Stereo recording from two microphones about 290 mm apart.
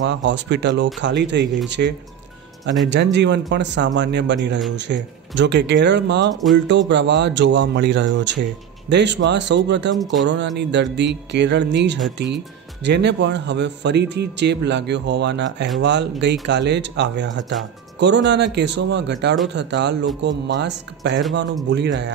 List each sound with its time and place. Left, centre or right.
0.0 s speech: right